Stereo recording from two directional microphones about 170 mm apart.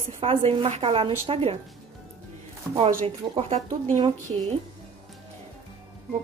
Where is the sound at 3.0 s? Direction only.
35° right (ahead or behind).